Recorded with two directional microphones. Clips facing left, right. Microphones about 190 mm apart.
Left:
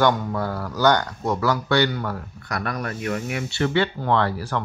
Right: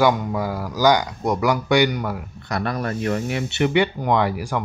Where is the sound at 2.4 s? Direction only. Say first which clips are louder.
Right 3 dB; 25° right (ahead or behind).